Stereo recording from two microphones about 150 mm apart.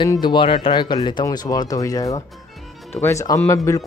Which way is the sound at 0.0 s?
30° left (ahead or behind).